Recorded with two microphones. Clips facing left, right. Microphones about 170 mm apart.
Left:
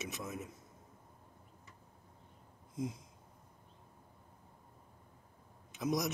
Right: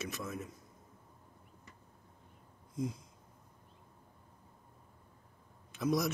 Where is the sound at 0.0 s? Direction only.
20° left (ahead or behind).